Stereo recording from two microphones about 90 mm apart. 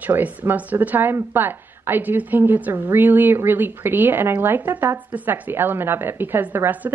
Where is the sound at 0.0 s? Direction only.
20° right (ahead or behind).